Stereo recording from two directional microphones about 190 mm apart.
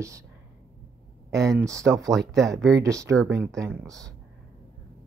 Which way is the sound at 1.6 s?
15° right (ahead or behind).